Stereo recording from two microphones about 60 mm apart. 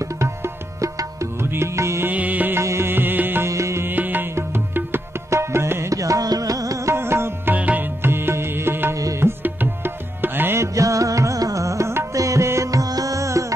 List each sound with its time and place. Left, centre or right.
0.0 s music: right
1.4 s music: right
2.0 s music: right
2.5 s music: right
3.4 s music: right
3.8 s music: right
5.3 s tabla: right
5.9 s music: right
6.9 s music: right
7.5 s music: right
8.9 s music: right
9.2 s music: right
10.6 s music: right
12.2 s music: right